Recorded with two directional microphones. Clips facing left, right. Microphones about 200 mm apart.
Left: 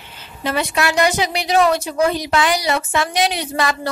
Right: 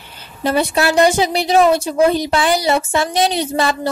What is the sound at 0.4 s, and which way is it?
A woman's voice, 35° right (ahead or behind).